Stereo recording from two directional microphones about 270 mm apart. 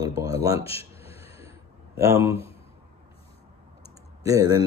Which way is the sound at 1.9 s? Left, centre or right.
Centre.